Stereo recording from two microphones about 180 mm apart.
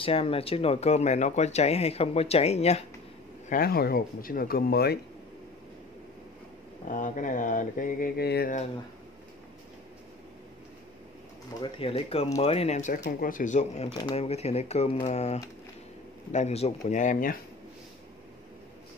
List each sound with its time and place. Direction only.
0.0 s speech: 30° left (ahead or behind)
3.4 s speech: 55° left (ahead or behind)
6.9 s a sound: 45° left (ahead or behind); by 8.5 s 60° left (ahead or behind)
11.6 s speech: 30° left (ahead or behind)
13.2 s a sound: 50° left (ahead or behind)
14.0 s speech: 35° left (ahead or behind)